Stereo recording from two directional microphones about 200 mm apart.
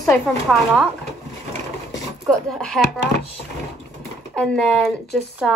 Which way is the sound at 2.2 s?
Centre (ahead or behind).